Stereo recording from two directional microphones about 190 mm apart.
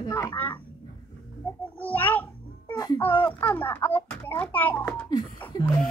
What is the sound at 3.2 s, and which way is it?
Speech, 10° left (ahead or behind).